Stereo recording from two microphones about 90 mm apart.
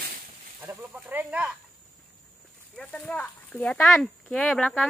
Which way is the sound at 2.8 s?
10° left (ahead or behind).